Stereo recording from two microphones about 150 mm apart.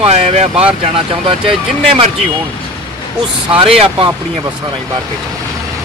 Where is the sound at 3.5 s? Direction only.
40° right (ahead or behind).